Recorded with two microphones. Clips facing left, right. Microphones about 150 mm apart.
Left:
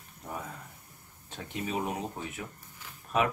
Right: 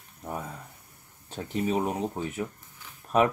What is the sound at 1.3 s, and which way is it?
Speech, 35° right (ahead or behind).